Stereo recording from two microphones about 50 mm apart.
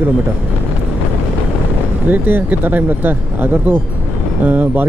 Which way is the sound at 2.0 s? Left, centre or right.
Right.